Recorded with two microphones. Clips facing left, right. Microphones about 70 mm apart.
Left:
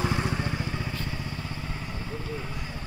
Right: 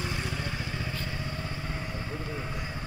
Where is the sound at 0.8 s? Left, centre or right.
Centre.